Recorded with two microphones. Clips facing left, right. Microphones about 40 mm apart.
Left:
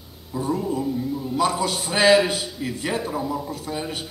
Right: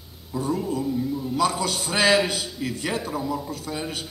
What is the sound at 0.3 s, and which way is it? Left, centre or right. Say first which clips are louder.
A man's voice: left 1 dB; centre.